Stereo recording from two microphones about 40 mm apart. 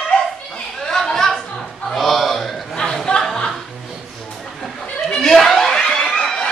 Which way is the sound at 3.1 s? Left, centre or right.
Left.